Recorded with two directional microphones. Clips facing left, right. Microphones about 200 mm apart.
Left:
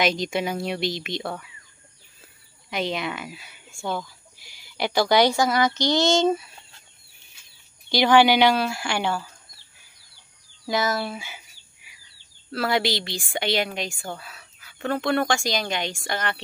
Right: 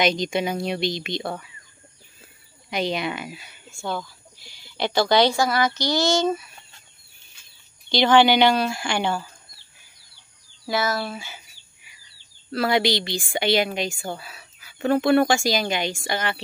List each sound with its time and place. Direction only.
0.0 s speech: 5° left (ahead or behind)
2.7 s speech: centre (ahead or behind); by 5.7 s 15° left (ahead or behind)
5.8 s female singing: 20° left (ahead or behind)
7.9 s speech: 10° left (ahead or behind)
10.7 s speech: 15° left (ahead or behind)
11.1 s bird: 10° left (ahead or behind)
12.4 s speech: centre (ahead or behind)